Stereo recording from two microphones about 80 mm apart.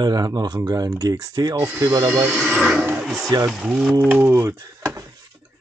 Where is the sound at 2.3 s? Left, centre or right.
Centre.